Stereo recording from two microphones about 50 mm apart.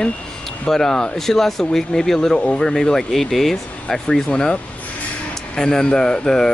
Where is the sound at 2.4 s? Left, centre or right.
Centre.